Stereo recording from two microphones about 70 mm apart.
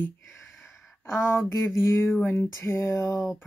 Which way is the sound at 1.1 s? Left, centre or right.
Left.